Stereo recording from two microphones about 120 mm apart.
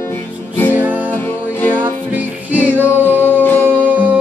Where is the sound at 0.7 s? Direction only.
15° right (ahead or behind).